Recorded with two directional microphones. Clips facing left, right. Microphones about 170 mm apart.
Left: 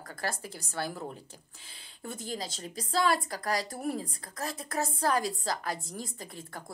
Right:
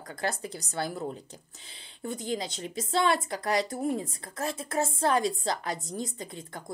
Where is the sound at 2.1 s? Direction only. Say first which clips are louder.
Right 5 dB; 20° right (ahead or behind).